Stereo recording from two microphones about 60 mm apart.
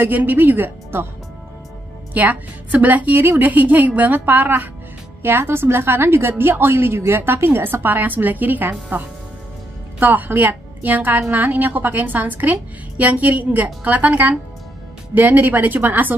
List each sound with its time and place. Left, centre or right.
0.0 s a woman's voice: right
2.1 s a woman's voice: right
5.2 s a woman's voice: right
9.9 s a woman's voice: right